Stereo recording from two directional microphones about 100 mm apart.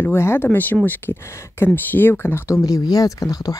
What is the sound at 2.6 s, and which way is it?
Speech, 35° left (ahead or behind).